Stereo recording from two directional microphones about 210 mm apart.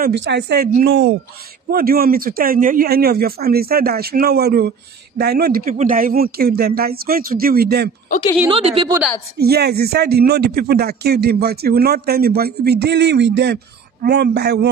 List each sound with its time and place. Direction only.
0.0 s speech: 55° right (ahead or behind)
8.5 s a woman's voice: 25° right (ahead or behind)
9.4 s speech: 50° right (ahead or behind)